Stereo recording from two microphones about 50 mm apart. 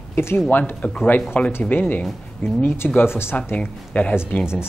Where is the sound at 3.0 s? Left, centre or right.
Left.